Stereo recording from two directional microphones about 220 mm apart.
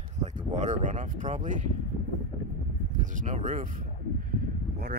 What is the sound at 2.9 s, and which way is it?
Speech, 35° right (ahead or behind).